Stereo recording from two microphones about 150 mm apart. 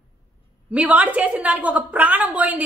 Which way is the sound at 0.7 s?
10° right (ahead or behind).